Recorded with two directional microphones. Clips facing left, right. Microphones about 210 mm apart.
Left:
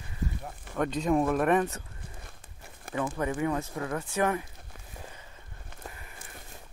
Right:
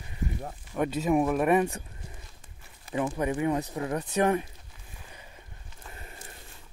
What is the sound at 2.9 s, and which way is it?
Speech, 20° right (ahead or behind).